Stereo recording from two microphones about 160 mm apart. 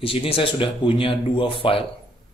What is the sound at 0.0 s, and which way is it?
Speech, 35° left (ahead or behind).